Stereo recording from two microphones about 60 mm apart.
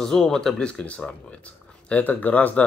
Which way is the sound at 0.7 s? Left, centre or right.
Centre.